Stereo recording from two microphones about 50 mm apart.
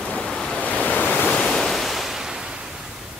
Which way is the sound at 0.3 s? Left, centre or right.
Centre.